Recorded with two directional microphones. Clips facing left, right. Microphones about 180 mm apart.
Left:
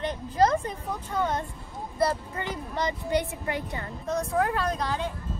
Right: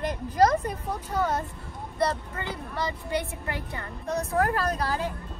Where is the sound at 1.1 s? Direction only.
5° right (ahead or behind).